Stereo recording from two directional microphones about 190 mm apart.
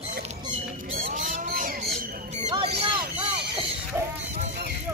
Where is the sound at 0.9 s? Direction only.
50° right (ahead or behind); by 3.3 s 35° right (ahead or behind).